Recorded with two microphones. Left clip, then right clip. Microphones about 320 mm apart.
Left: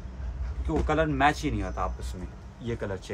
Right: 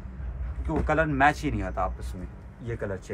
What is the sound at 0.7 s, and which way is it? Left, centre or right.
Speech, centre.